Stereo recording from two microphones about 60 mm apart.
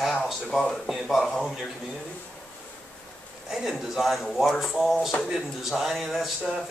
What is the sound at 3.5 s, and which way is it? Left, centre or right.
Speech, centre.